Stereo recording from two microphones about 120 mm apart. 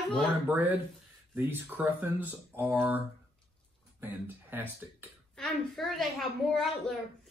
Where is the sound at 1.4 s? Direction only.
20° right (ahead or behind).